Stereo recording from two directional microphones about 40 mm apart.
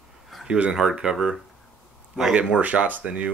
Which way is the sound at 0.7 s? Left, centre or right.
Centre.